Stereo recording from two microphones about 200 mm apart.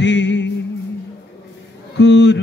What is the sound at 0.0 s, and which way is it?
Music, 60° left (ahead or behind).